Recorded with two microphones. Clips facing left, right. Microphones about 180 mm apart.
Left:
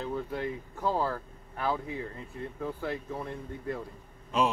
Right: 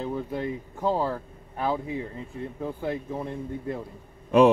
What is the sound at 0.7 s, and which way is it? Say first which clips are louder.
Speech: right 4 dB; 20° right (ahead or behind).